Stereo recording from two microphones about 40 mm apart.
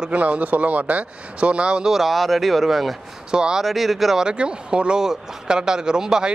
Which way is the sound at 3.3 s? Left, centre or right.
Centre.